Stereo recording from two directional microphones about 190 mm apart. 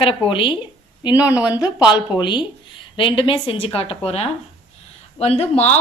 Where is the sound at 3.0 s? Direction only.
30° left (ahead or behind).